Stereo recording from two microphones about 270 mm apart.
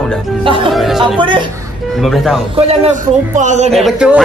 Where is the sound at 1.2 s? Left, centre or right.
Centre.